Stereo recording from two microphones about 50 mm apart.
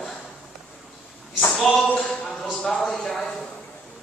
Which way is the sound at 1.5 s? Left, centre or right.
Centre.